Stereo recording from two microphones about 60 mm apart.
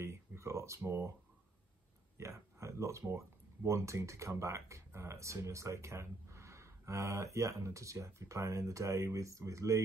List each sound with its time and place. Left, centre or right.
0.0 s speech: right
2.1 s speech: right